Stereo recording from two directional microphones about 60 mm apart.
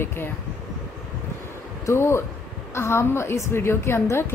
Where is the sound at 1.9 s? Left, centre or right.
Left.